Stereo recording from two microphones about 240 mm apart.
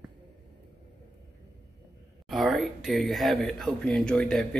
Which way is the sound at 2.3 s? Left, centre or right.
Centre.